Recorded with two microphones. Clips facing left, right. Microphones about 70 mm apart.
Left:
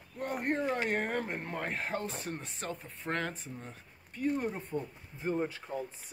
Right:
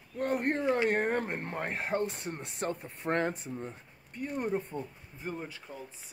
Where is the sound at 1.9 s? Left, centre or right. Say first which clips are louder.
Right 8 dB; right.